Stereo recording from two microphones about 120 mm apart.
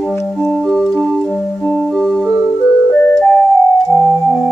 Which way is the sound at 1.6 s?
5° left (ahead or behind).